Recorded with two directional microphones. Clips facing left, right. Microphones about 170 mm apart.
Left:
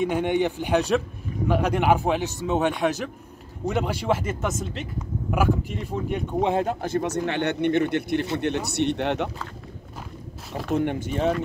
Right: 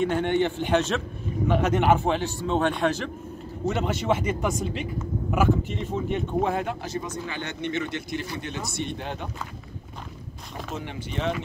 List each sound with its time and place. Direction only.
0.0 s a man's voice: 10° left (ahead or behind)
3.6 s a man's voice: centre (ahead or behind)
6.6 s speech: 40° left (ahead or behind)
6.9 s speech: 65° left (ahead or behind)
10.7 s speech: 55° left (ahead or behind)